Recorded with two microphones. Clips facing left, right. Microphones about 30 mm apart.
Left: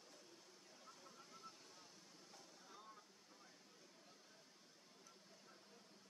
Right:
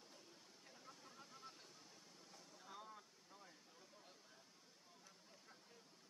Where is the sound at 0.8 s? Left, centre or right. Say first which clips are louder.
Right 1 dB; centre.